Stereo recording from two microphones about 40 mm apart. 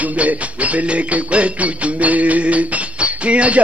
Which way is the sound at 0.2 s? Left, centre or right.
Right.